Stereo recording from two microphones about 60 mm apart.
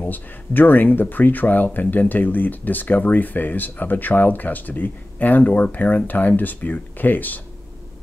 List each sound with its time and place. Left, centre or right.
0.0 s speech: left